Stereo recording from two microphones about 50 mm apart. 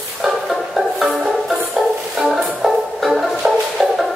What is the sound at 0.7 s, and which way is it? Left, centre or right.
Music, centre.